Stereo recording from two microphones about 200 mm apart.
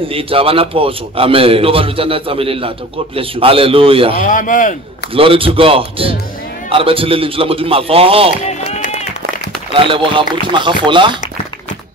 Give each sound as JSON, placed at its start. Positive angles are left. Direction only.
{"t": 0.1, "sound": "a man's voice", "side_deg": -25}
{"t": 4.2, "sound": "speech", "side_deg": 40}
{"t": 5.1, "sound": "a man's voice", "side_deg": -25}
{"t": 8.5, "sound": "run", "side_deg": 35}
{"t": 9.7, "sound": "a man's voice", "side_deg": -25}